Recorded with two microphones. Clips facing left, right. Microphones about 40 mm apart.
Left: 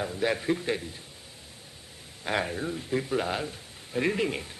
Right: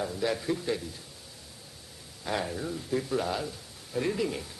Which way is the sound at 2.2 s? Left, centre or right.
Left.